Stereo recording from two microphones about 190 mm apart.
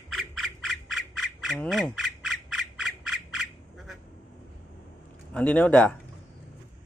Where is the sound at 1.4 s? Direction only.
Centre (ahead or behind).